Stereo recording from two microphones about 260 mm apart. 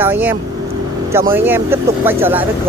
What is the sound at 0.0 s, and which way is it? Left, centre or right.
Speech, centre.